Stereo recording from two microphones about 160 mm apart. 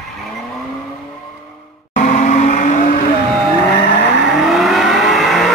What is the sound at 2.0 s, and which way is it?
Vehicle, 50° left (ahead or behind).